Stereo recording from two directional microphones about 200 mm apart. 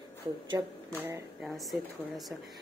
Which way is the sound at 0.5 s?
10° right (ahead or behind).